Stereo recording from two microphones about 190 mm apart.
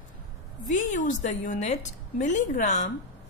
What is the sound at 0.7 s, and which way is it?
A woman's voice, 40° left (ahead or behind).